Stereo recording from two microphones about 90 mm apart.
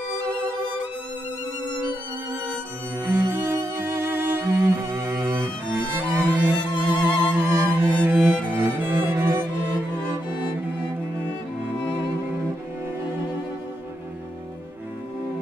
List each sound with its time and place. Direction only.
3.0 s music: 25° right (ahead or behind)